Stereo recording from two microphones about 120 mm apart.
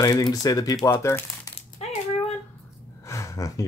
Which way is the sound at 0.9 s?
20° left (ahead or behind).